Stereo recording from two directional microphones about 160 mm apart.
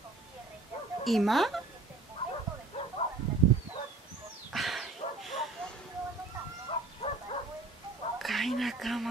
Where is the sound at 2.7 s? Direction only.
35° left (ahead or behind).